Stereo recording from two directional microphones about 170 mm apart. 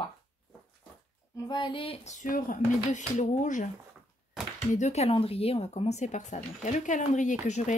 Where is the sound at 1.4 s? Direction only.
30° left (ahead or behind); by 3.7 s 45° left (ahead or behind).